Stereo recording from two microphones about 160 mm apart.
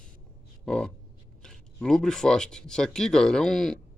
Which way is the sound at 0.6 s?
5° left (ahead or behind).